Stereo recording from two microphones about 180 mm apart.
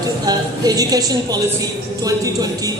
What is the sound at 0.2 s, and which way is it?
A woman's voice, 20° right (ahead or behind).